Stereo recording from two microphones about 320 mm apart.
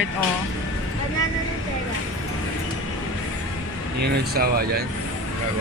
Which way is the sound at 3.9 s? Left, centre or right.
Right.